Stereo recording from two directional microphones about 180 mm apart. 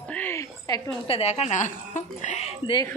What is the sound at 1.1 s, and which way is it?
Speech, 35° left (ahead or behind).